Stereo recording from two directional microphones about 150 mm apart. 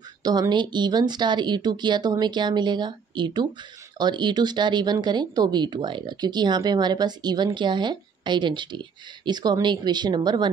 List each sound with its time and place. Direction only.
0.2 s speech: 30° right (ahead or behind)